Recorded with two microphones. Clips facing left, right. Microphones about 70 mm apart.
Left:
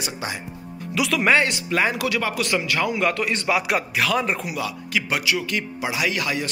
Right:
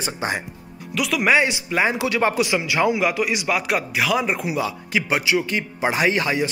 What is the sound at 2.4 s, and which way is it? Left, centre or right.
Speech, centre.